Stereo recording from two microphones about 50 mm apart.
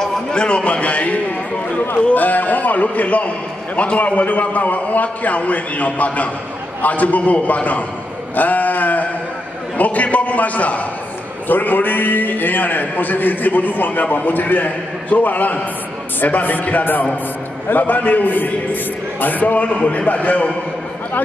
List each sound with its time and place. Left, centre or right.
0.0 s a man's voice: centre
8.4 s a sound: left
9.8 s a man's voice: left